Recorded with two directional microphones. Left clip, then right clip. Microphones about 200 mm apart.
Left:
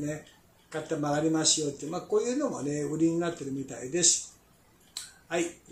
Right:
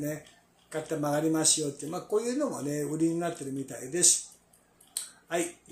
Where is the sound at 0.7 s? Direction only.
20° right (ahead or behind).